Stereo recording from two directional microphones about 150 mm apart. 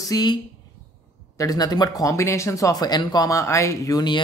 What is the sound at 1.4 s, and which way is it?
Speech, 25° left (ahead or behind).